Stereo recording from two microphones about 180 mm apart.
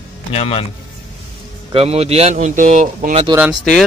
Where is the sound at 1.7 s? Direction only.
35° right (ahead or behind).